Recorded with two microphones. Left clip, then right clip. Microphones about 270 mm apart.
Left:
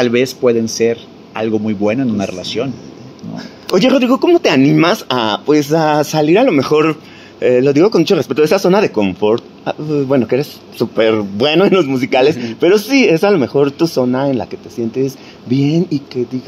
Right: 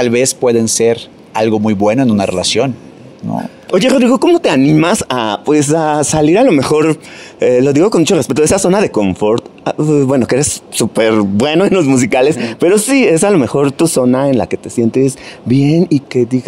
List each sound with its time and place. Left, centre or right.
0.0 s speech: right
3.8 s speech: right